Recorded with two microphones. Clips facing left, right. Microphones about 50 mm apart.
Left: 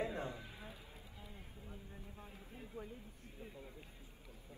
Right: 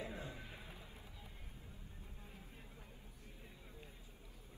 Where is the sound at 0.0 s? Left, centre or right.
Left.